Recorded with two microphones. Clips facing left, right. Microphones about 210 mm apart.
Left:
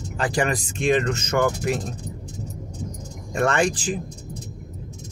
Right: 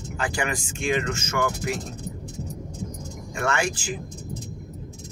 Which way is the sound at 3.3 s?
35° left (ahead or behind).